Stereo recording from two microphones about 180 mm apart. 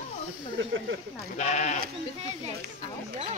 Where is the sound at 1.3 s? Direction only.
40° left (ahead or behind).